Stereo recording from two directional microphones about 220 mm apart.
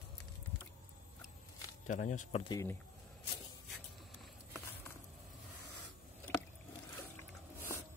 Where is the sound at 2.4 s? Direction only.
15° left (ahead or behind).